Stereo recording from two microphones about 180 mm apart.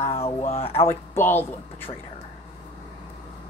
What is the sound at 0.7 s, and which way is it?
Speech, 15° left (ahead or behind).